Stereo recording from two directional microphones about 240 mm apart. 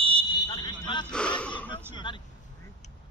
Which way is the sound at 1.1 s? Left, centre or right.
Centre.